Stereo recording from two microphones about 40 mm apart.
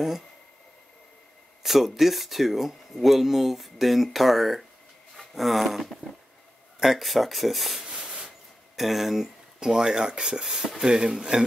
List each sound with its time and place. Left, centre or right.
1.6 s speech: centre
5.1 s a sound: centre
6.8 s speech: centre
8.0 s rub: centre
8.7 s speech: centre